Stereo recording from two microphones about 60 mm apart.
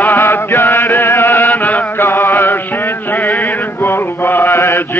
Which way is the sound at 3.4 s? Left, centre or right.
Left.